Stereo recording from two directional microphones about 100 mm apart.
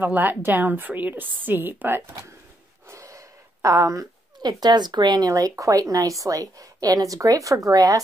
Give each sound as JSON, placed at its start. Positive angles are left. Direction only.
{"t": 0.0, "sound": "a woman's voice", "side_deg": -20}